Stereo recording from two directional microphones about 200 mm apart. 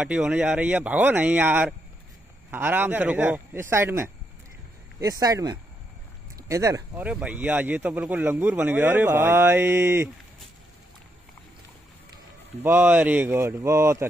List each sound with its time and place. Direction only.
0.0 s speech: 5° right (ahead or behind)
12.6 s speech: 10° right (ahead or behind)